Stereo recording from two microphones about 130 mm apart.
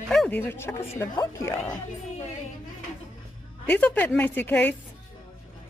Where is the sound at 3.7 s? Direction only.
10° left (ahead or behind).